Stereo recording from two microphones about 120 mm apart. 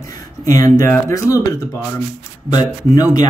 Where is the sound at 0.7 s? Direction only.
25° left (ahead or behind).